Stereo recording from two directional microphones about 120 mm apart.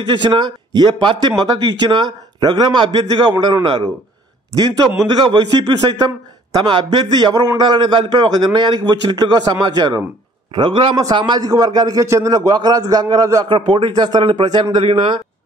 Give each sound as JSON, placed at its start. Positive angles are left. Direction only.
{"t": 0.0, "sound": "a man's voice", "side_deg": -40}
{"t": 4.6, "sound": "a man's voice", "side_deg": -35}